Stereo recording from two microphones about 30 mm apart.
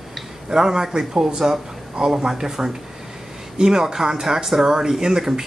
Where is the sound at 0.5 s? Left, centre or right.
Centre.